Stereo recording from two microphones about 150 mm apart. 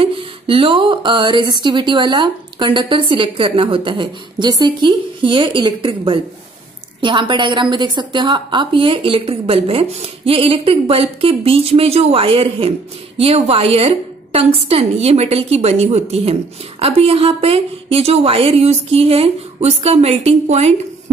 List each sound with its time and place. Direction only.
0.0 s speech: 35° right (ahead or behind)